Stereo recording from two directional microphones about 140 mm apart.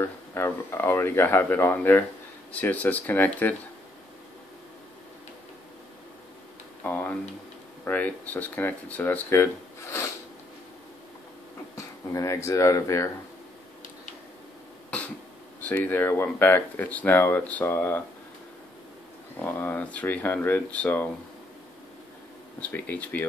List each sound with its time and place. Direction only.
0.0 s speech: 15° left (ahead or behind)
6.8 s speech: 10° left (ahead or behind)
11.7 s speech: 20° left (ahead or behind)
15.6 s speech: 10° left (ahead or behind)
19.4 s speech: 15° left (ahead or behind)
22.6 s speech: 10° left (ahead or behind)